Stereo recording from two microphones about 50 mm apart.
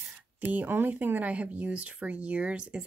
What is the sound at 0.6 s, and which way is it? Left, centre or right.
Speech, right.